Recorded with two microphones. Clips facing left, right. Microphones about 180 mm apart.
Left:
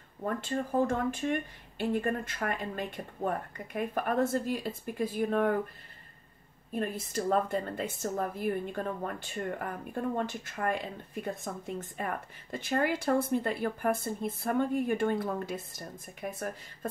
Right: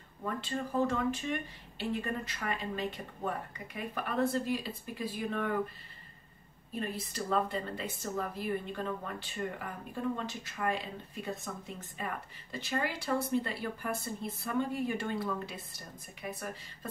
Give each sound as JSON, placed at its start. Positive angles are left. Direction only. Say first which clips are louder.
{"t": 0.2, "sound": "speech", "louder": "left 4 dB", "side_deg": 50}
{"t": 6.7, "sound": "speech", "louder": "left 4 dB", "side_deg": 50}